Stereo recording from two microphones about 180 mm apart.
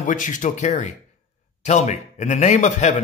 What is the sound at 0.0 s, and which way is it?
A man's voice, 45° left (ahead or behind).